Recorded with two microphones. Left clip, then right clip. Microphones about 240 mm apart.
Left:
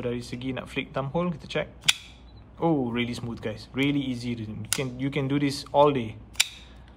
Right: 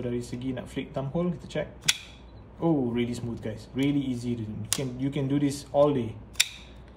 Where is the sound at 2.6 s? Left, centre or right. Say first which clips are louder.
Left 1 dB; centre.